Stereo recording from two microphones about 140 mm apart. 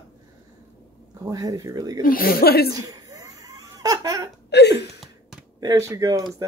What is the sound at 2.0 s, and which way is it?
Speech, 90° left.